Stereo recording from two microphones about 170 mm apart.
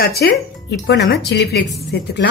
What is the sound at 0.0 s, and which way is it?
Speech, 70° left (ahead or behind).